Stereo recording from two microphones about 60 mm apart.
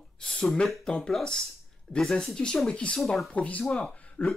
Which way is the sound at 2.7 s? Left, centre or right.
Centre.